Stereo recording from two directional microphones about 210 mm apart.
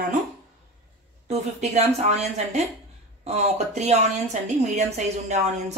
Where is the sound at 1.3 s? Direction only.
30° right (ahead or behind).